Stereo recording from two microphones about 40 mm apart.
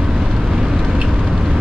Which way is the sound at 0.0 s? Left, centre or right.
Centre.